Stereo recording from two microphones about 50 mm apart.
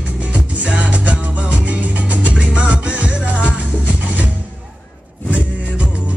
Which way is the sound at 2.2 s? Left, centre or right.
Right.